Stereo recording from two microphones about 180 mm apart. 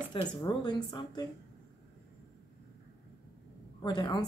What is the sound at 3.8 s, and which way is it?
Speech, 25° left (ahead or behind).